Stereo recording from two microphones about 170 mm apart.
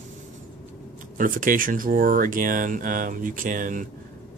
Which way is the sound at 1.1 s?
50° right (ahead or behind).